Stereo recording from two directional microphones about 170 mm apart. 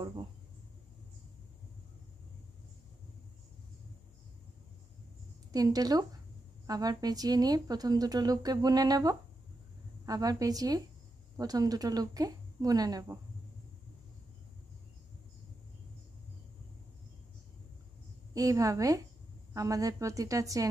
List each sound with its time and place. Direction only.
0.0 s speech: 25° right (ahead or behind)
5.5 s speech: 20° right (ahead or behind)
18.3 s speech: 20° right (ahead or behind)